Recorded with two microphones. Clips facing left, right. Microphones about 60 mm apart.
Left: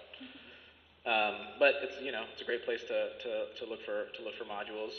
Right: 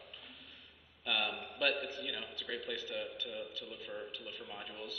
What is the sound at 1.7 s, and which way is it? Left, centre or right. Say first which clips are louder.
A man's voice: left 3 dB; left.